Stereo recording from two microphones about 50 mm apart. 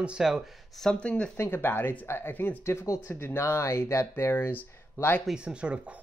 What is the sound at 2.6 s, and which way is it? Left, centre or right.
Speech, left.